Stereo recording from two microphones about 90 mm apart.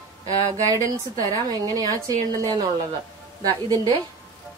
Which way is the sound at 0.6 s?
40° right (ahead or behind).